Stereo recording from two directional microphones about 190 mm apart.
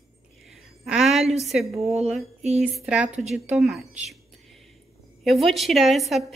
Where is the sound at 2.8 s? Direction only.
5° right (ahead or behind).